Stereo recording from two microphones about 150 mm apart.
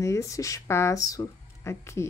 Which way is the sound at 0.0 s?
20° left (ahead or behind).